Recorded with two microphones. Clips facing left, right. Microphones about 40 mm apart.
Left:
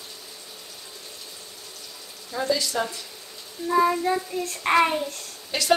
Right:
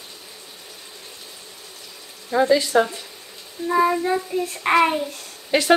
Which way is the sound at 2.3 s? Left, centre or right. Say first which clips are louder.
Right 9 dB; right.